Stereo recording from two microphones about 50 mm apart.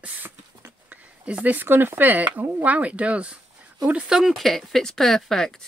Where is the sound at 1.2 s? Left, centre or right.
Right.